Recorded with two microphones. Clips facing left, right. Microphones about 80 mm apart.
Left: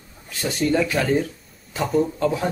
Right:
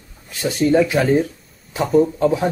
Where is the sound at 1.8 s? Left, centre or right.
Centre.